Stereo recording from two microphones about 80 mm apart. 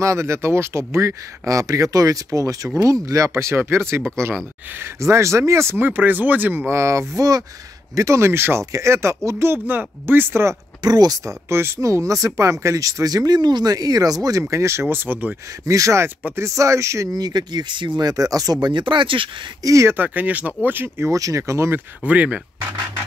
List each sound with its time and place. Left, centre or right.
0.0 s speech: right
6.7 s speech: right
10.8 s speech: right
11.4 s speech: right
14.5 s speech: right
15.6 s speech: right
17.1 s speech: right
18.1 s speech: right
19.6 s speech: right
19.9 s speech: right
21.1 s speech: right
22.0 s speech: centre